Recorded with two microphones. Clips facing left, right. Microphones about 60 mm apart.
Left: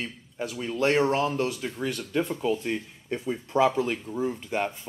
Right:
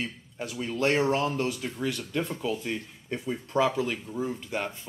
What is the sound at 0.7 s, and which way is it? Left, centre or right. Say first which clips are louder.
Speech: left 2 dB; centre.